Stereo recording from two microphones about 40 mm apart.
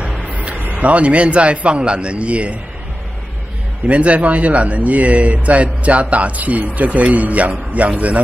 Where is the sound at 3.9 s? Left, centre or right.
Right.